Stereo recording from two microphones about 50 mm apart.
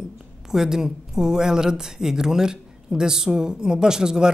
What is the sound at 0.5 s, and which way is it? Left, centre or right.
Speech, centre.